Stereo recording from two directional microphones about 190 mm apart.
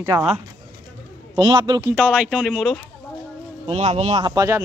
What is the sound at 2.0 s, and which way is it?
Speech, 5° right (ahead or behind).